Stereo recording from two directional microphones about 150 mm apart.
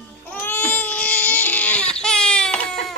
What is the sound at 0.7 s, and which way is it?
Baby cry, 10° left (ahead or behind).